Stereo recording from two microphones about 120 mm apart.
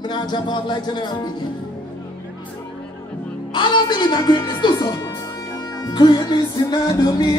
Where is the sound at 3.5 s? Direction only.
40° left (ahead or behind).